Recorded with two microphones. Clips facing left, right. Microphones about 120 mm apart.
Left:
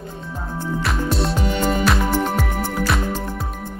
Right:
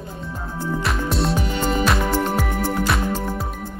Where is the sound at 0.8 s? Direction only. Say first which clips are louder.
Left 1 dB; centre (ahead or behind).